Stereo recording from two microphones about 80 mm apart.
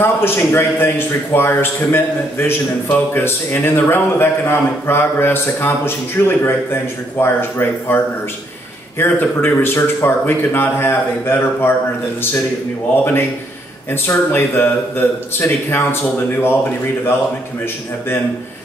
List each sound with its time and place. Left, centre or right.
0.0 s a man's voice: left
14.0 s a man's voice: left